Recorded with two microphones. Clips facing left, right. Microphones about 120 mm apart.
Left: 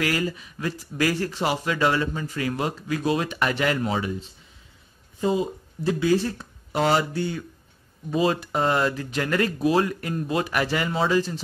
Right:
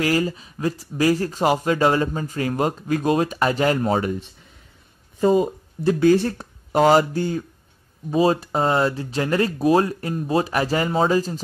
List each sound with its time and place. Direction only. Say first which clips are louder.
0.0 s speech: right 4 dB; 30° right (ahead or behind)
5.2 s speech: right 6 dB; 55° right (ahead or behind); by 11.4 s 40° right (ahead or behind)